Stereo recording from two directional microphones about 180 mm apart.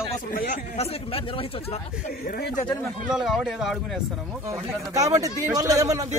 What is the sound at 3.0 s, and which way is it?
Speech, centre (ahead or behind).